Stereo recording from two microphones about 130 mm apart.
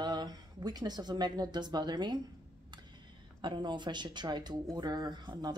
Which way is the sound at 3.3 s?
35° right (ahead or behind).